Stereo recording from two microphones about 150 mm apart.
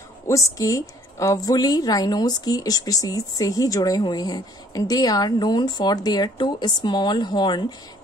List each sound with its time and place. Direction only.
0.3 s a woman's voice: 20° left (ahead or behind)